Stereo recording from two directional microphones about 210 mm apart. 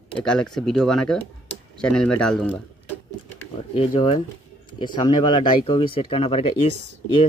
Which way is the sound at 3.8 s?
25° left (ahead or behind).